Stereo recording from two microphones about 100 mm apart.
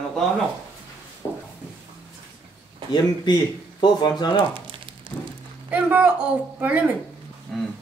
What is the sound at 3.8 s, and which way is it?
Speech, 45° left (ahead or behind).